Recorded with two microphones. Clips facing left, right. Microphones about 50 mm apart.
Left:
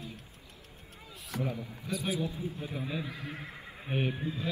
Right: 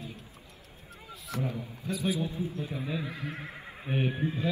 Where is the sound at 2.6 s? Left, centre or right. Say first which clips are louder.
Right 2 dB; centre.